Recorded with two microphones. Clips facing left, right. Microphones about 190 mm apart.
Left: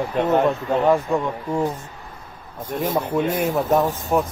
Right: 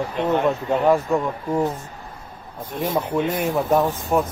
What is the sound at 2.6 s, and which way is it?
Speech, 45° left (ahead or behind).